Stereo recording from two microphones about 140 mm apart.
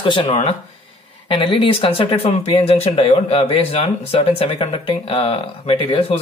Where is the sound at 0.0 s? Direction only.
40° left (ahead or behind).